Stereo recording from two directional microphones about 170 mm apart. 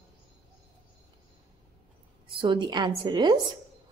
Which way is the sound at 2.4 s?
30° right (ahead or behind).